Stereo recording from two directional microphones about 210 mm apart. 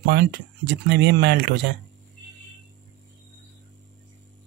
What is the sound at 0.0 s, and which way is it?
Speech, 55° right (ahead or behind).